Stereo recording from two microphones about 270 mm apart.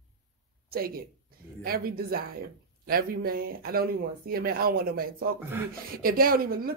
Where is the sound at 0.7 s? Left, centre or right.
Right.